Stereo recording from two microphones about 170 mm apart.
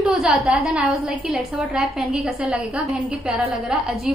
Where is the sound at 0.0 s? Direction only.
5° right (ahead or behind).